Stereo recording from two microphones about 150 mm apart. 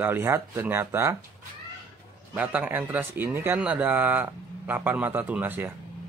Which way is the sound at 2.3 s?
10° right (ahead or behind).